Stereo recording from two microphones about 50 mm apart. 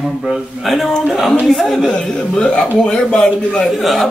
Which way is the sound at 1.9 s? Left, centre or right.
Centre.